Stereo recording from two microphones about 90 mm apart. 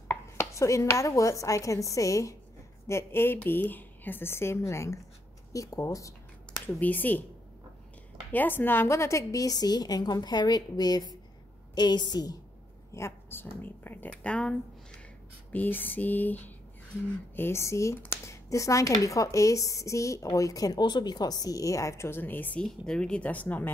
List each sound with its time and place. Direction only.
0.1 s a woman's voice: 30° left (ahead or behind)
6.8 s a woman's voice: 20° left (ahead or behind)
8.3 s a woman's voice: 20° left (ahead or behind); by 12.4 s 50° left (ahead or behind)
12.9 s a woman's voice: 30° left (ahead or behind); by 15.0 s 10° left (ahead or behind)
15.5 s a woman's voice: 20° left (ahead or behind)